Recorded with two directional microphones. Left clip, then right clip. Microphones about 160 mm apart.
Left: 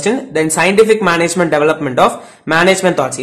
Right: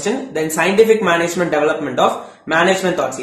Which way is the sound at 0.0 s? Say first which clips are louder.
Left 5 dB; 35° left (ahead or behind).